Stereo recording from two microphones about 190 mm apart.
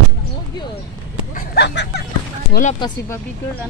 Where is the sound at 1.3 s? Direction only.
60° left (ahead or behind).